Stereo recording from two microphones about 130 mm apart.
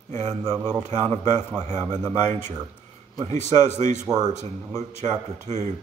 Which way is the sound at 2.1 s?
65° right (ahead or behind).